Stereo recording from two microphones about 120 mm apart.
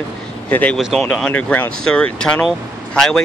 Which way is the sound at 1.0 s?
10° left (ahead or behind).